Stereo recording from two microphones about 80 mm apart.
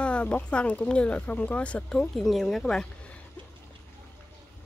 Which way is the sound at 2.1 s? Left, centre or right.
Centre.